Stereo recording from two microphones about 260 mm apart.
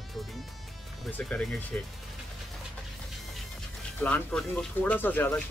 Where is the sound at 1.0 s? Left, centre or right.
Centre.